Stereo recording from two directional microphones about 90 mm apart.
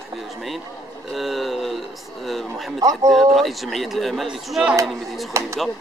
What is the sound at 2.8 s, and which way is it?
Speech, 40° right (ahead or behind).